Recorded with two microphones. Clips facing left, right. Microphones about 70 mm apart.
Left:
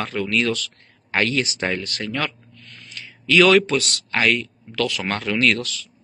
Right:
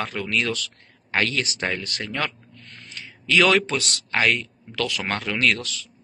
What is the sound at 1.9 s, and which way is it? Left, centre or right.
A man's voice, centre.